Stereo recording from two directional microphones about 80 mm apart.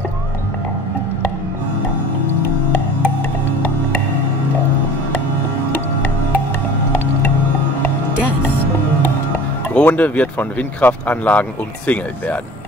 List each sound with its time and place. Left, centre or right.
9.8 s speech: centre